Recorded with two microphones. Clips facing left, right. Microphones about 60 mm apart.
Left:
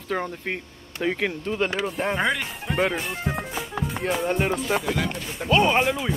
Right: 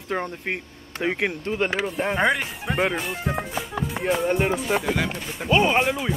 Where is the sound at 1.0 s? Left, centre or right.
Centre.